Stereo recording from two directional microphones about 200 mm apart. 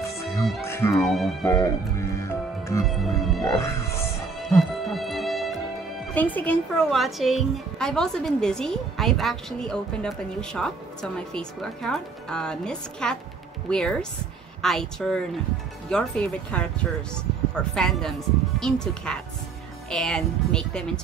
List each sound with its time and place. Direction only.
0.7 s speech: 15° left (ahead or behind)
0.9 s a woman's voice: centre (ahead or behind)
1.4 s music: 15° left (ahead or behind)
2.8 s a woman's voice: centre (ahead or behind)
3.5 s music: 15° left (ahead or behind)
4.8 s music: centre (ahead or behind)
6.1 s a woman's voice: 10° left (ahead or behind)